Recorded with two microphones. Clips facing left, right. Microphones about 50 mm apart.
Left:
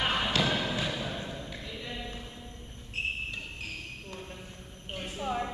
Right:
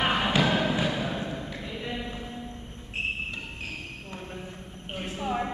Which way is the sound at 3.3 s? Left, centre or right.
Centre.